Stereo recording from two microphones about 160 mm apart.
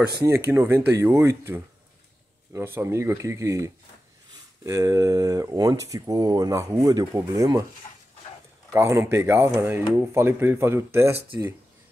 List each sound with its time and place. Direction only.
0.5 s speech: 15° right (ahead or behind)
8.7 s speech: 15° right (ahead or behind)